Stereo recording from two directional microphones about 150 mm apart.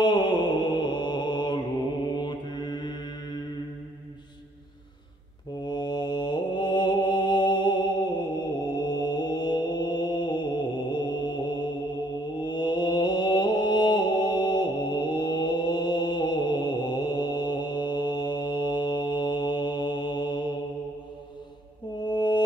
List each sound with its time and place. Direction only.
0.0 s mantra: 30° left (ahead or behind)
5.7 s mantra: 30° left (ahead or behind)
22.0 s mantra: 30° left (ahead or behind)